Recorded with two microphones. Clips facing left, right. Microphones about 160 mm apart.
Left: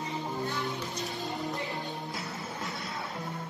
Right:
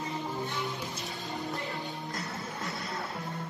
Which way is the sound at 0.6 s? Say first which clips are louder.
Left 2 dB; centre (ahead or behind).